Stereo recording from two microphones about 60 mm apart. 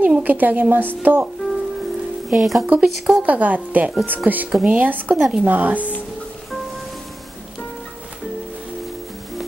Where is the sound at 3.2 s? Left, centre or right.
Right.